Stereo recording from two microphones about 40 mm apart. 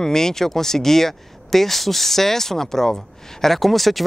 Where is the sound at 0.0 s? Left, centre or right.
Centre.